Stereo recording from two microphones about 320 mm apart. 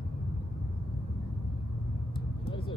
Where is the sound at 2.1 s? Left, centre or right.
Centre.